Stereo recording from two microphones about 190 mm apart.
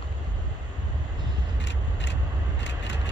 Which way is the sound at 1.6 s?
70° left (ahead or behind).